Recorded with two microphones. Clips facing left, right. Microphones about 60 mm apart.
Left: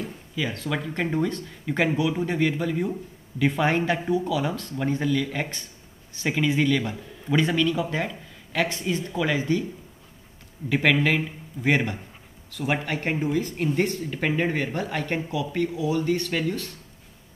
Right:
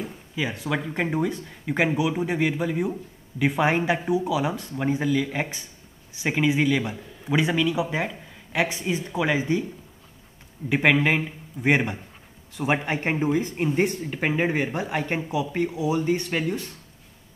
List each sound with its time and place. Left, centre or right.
0.4 s speech: centre
10.7 s speech: centre